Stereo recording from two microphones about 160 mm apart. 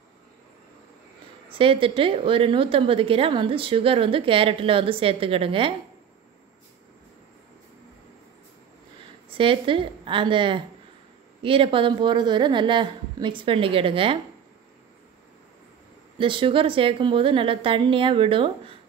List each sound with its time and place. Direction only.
1.5 s a woman's voice: 35° right (ahead or behind)
9.4 s a woman's voice: 35° right (ahead or behind)
16.2 s a woman's voice: 30° right (ahead or behind)